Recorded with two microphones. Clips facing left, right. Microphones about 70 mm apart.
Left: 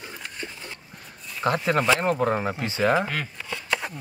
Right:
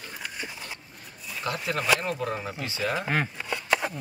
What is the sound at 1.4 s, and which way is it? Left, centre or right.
Speech, left.